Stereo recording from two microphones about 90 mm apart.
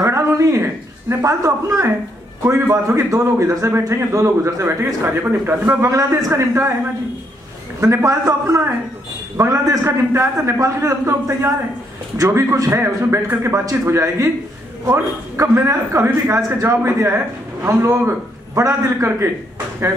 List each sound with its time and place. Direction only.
0.0 s a man's voice: 30° right (ahead or behind)
5.9 s a man's voice: 35° right (ahead or behind)
7.8 s a man's voice: 35° right (ahead or behind)